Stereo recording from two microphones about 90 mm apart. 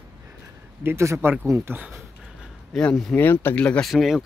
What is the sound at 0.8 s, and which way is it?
Speech, 30° right (ahead or behind).